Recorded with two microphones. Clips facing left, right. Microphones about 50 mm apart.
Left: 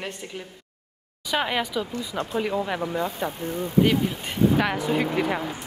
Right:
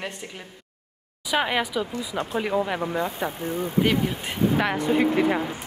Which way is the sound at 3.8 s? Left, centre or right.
Centre.